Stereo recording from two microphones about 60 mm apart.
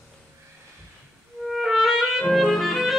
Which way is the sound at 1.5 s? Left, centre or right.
Centre.